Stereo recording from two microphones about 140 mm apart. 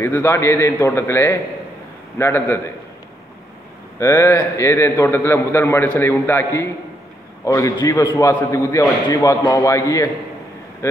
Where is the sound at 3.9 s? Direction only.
20° left (ahead or behind).